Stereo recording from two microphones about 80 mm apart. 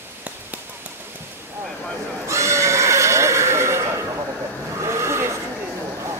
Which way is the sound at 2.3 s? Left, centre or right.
Right.